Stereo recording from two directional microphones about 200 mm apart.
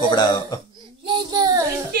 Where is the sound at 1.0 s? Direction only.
25° right (ahead or behind).